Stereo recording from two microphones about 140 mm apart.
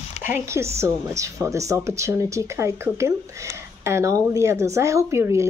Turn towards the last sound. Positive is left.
turn(degrees=-20)  # may be behind; listen again after turning